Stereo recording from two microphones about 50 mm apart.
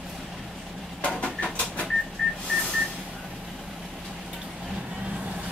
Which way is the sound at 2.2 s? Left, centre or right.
Centre.